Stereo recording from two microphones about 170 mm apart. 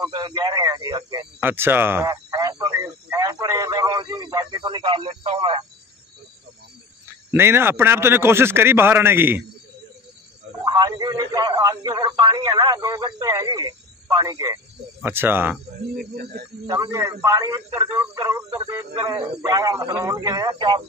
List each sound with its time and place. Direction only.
0.0 s a man's voice: 25° right (ahead or behind)
1.4 s a man's voice: 10° right (ahead or behind)
2.3 s a sound: 25° right (ahead or behind)
7.2 s a man's voice: 15° right (ahead or behind)
10.6 s a man's voice: 25° right (ahead or behind)
15.0 s a man's voice: 10° right (ahead or behind)
16.0 s speech: 65° right (ahead or behind)
16.6 s a man's voice: 20° right (ahead or behind)